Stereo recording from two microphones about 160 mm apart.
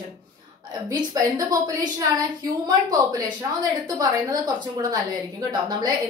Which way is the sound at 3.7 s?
25° right (ahead or behind).